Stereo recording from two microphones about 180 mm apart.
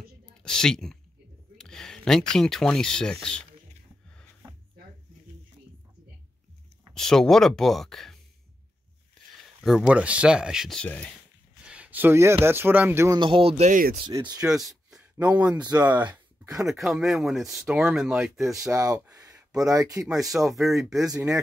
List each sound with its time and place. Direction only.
0.4 s speech: 5° left (ahead or behind)
1.6 s a sound: 5° left (ahead or behind)
2.3 s speech: 5° left (ahead or behind)
6.9 s speech: centre (ahead or behind)
9.6 s speech: centre (ahead or behind)
11.6 s speech: 5° right (ahead or behind)
13.2 s speech: 30° right (ahead or behind); by 13.9 s 45° right (ahead or behind)
14.3 s speech: 5° right (ahead or behind)
14.7 s a sound: 5° right (ahead or behind)
15.2 s speech: 10° right (ahead or behind)
15.9 s speech: 25° right (ahead or behind)
16.6 s speech: centre (ahead or behind)
18.7 s speech: 20° right (ahead or behind)
20.0 s speech: centre (ahead or behind)